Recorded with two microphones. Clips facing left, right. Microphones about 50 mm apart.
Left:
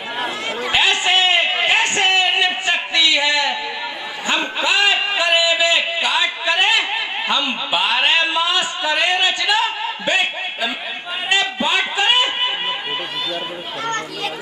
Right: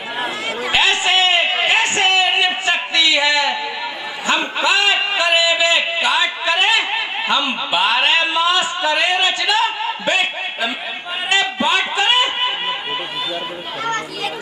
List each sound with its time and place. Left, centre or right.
0.2 s chatter: centre
4.3 s a man's voice: centre
11.2 s chatter: centre
13.8 s children playing: centre